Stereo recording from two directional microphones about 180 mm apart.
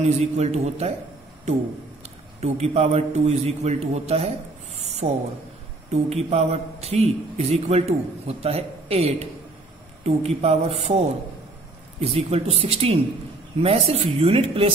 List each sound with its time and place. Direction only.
0.0 s a man's voice: 35° right (ahead or behind)
2.0 s a man's voice: 35° right (ahead or behind)
4.7 s owl: 40° right (ahead or behind)
5.9 s a man's voice: 35° right (ahead or behind)
12.0 s a man's voice: 35° right (ahead or behind)